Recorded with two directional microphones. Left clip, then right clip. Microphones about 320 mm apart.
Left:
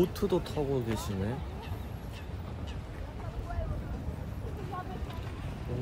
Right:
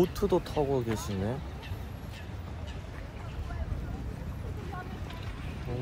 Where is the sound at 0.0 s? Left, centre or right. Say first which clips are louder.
Right 2 dB; centre.